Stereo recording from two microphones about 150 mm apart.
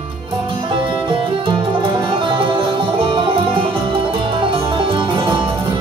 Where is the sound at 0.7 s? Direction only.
35° right (ahead or behind).